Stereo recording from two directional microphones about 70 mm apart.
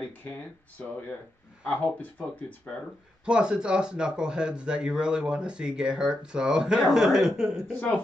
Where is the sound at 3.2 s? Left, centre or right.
Centre.